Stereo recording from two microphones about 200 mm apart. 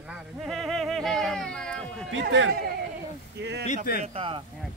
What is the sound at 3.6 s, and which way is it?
Speech, 45° left (ahead or behind).